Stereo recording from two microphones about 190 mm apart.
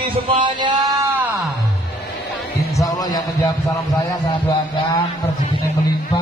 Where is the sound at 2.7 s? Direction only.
20° left (ahead or behind).